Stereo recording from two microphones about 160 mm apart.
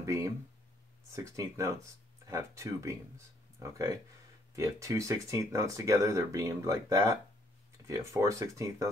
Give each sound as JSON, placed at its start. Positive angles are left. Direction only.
{"t": 0.0, "sound": "speech", "side_deg": -20}